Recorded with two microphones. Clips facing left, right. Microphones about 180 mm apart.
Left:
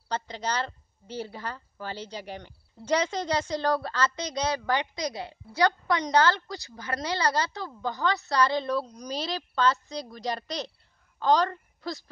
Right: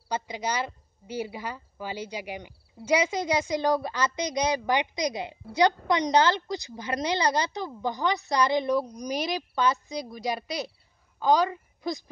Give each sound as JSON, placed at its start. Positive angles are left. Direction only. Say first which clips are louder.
{"t": 0.1, "sound": "a woman's voice", "louder": "right 1 dB", "side_deg": -10}